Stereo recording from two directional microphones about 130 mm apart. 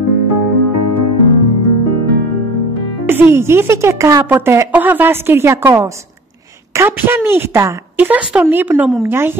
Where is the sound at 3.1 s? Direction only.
20° right (ahead or behind).